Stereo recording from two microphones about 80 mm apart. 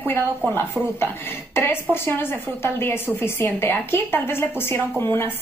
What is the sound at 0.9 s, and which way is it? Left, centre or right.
A woman's voice, left.